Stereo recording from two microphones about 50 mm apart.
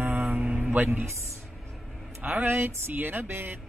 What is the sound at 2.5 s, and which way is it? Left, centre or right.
Speech, right.